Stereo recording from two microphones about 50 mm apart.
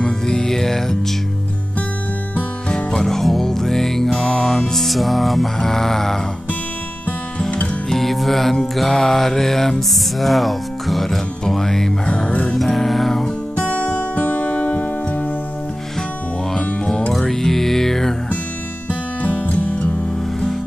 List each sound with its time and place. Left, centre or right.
0.0 s music: centre
2.7 s music: centre
7.6 s music: centre
12.3 s music: left
12.5 s music: centre
13.6 s music: left
16.5 s music: centre
18.9 s music: left